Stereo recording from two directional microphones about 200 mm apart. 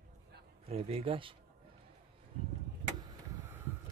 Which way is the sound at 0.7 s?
30° right (ahead or behind).